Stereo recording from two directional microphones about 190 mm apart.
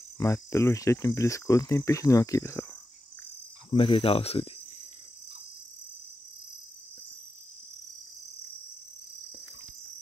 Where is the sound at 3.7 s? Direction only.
30° left (ahead or behind).